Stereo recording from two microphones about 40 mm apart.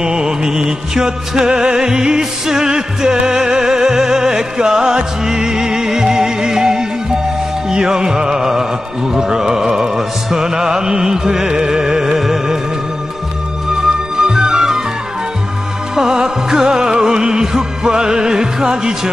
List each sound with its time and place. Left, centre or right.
0.0 s music: centre
14.2 s music: centre
15.9 s music: centre